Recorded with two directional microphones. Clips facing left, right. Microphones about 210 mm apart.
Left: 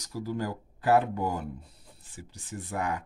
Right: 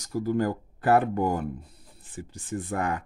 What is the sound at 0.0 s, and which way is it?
Speech, 50° right (ahead or behind).